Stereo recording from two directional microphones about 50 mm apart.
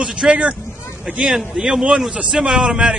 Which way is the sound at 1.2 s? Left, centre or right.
Centre.